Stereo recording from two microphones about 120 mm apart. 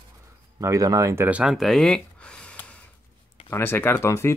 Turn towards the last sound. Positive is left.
turn(degrees=20)  # may be behind; listen again after turning